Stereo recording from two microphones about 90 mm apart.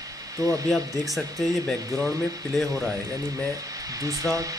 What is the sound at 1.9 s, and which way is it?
Speech, 40° right (ahead or behind).